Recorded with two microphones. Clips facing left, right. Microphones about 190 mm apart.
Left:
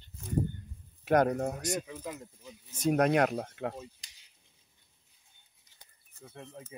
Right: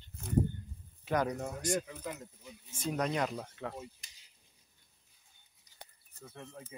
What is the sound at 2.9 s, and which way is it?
Speech, 60° left (ahead or behind).